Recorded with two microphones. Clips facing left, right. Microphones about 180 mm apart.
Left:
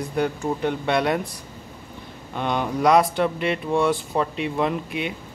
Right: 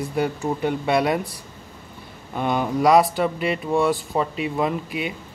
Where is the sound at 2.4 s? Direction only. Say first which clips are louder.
Right 2 dB; 5° right (ahead or behind).